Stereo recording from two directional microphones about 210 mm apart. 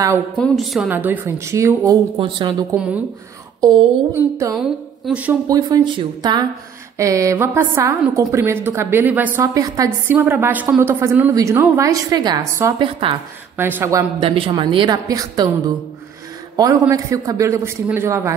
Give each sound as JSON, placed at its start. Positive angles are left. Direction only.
{"t": 0.4, "sound": "a woman's voice", "side_deg": 0}
{"t": 3.6, "sound": "a woman's voice", "side_deg": -25}
{"t": 4.6, "sound": "a woman's voice", "side_deg": -5}
{"t": 14.2, "sound": "a woman's voice", "side_deg": -25}